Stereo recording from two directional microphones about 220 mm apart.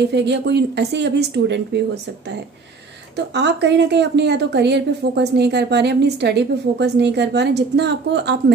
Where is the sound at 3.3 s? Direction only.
50° right (ahead or behind).